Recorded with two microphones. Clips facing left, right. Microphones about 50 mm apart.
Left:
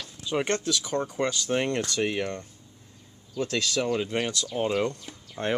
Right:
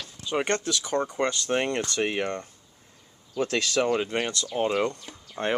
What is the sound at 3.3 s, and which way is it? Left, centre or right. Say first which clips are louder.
Speech: right 2 dB; right.